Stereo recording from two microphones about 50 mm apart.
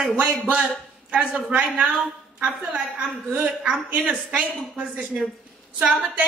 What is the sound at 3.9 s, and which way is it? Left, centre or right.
Speech, right.